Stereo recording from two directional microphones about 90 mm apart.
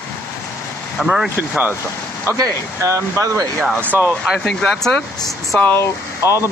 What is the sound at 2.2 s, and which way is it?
Speech, 35° right (ahead or behind).